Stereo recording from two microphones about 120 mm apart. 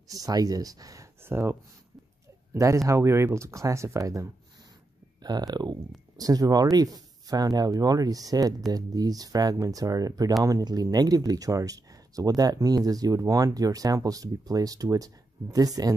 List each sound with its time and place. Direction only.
0.1 s speech: 30° right (ahead or behind)